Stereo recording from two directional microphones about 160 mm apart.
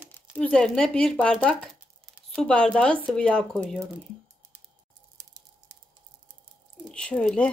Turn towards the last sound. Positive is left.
turn(degrees=5)  # may be behind; listen again after turning